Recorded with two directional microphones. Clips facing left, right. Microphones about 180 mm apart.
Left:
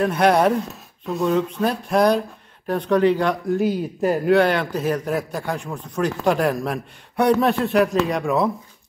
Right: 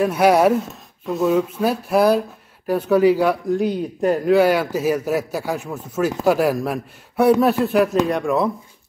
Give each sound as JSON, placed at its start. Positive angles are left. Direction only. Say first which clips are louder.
{"t": 0.0, "sound": "speech", "louder": "right 2 dB", "side_deg": -5}